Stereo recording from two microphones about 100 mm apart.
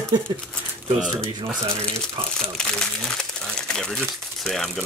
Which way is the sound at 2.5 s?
5° left (ahead or behind).